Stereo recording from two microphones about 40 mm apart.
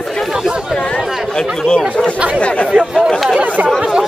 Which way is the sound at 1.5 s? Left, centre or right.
Left.